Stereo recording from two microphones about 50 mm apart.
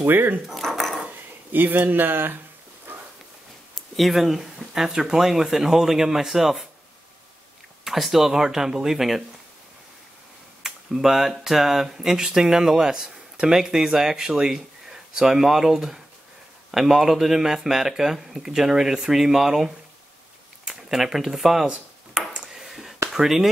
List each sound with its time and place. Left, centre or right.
0.0 s speech: right
0.6 s dog: centre
1.5 s speech: right
3.7 s speech: centre
7.8 s speech: centre
10.6 s speech: centre
22.1 s a sound: centre
23.0 s speech: centre